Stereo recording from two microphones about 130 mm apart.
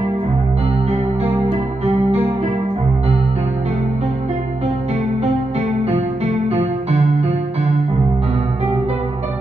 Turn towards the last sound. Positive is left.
turn(degrees=-55)  # may be behind; listen again after turning